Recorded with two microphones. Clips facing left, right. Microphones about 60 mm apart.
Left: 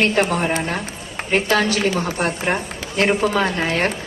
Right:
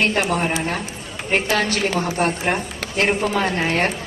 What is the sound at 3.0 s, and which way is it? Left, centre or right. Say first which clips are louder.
Speech: left 2 dB; left.